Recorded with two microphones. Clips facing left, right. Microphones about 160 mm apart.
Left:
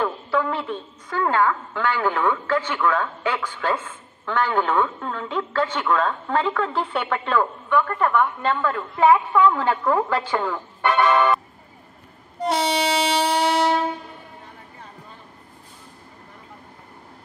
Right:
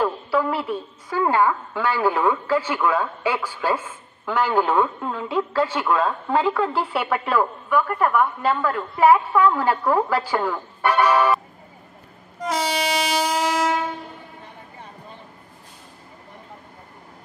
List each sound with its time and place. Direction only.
0.0 s a woman's voice: 5° right (ahead or behind)
12.4 s train: 30° left (ahead or behind)